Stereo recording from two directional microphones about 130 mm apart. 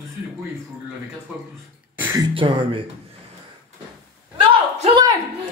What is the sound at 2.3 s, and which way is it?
Speech, 40° right (ahead or behind).